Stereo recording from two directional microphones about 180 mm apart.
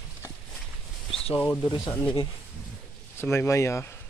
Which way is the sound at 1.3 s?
10° left (ahead or behind).